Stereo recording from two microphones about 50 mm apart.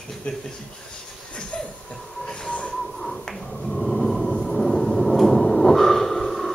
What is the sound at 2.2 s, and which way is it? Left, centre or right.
Train, centre.